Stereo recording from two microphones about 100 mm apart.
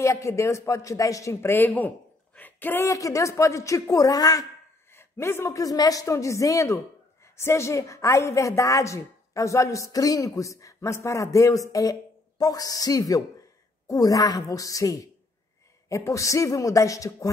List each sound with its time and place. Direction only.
0.0 s speech: 30° left (ahead or behind)
2.9 s a woman's voice: 35° left (ahead or behind)
4.9 s a woman's voice: 25° left (ahead or behind)